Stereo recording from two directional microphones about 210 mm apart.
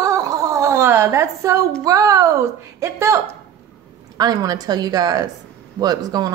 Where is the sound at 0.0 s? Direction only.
15° right (ahead or behind).